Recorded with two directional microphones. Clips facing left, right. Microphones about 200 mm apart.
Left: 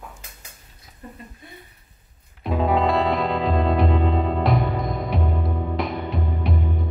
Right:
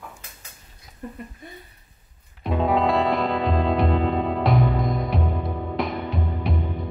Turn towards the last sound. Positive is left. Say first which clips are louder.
# left 1 dB
turn(degrees=0)  # may be behind; listen again after turning